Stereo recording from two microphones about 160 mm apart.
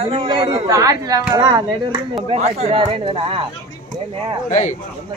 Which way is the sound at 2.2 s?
45° right (ahead or behind).